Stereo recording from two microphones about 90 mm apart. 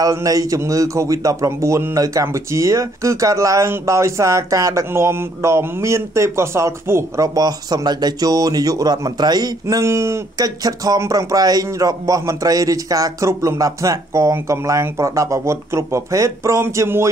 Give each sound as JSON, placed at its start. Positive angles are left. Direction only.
{"t": 0.0, "sound": "a man's voice", "side_deg": -40}
{"t": 7.3, "sound": "speech", "side_deg": -45}
{"t": 10.3, "sound": "a man's voice", "side_deg": -45}